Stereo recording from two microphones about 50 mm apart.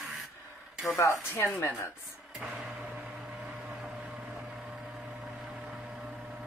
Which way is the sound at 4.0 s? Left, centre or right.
Right.